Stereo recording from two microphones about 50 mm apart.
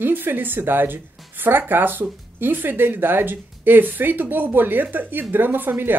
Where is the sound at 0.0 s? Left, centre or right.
Right.